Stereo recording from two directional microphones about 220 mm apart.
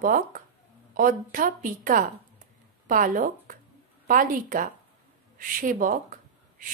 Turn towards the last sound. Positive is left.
turn(degrees=-40)  # may be behind; listen again after turning